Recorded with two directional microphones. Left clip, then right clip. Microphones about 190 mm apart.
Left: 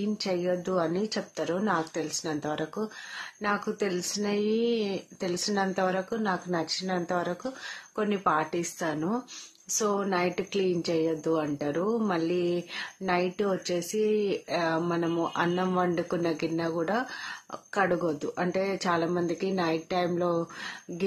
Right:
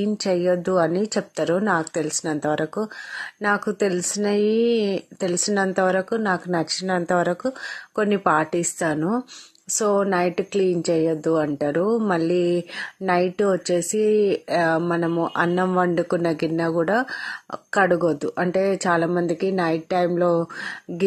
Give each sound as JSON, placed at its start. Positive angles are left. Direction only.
{"t": 0.0, "sound": "a woman's voice", "side_deg": -40}